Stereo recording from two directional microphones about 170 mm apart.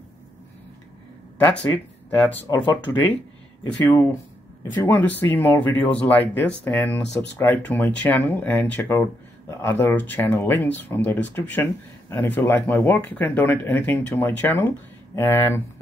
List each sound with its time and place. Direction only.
1.4 s speech: 10° left (ahead or behind)